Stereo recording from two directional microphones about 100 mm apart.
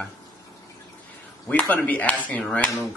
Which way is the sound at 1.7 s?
15° left (ahead or behind).